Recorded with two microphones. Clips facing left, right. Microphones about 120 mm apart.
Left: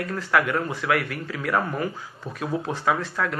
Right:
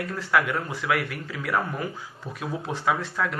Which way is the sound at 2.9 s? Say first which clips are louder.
Left 1 dB; 5° right (ahead or behind).